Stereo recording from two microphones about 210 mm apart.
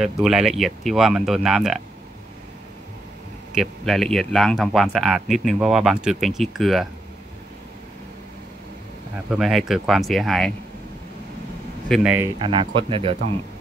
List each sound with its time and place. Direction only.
0.0 s speech: centre (ahead or behind)
3.5 s speech: centre (ahead or behind)
9.3 s speech: centre (ahead or behind)
11.9 s speech: 5° right (ahead or behind)
12.4 s speech: 25° right (ahead or behind)